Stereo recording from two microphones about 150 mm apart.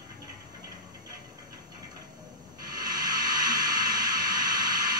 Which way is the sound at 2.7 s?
25° right (ahead or behind).